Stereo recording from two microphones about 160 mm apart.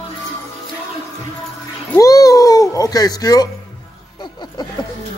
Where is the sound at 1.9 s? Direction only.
20° left (ahead or behind).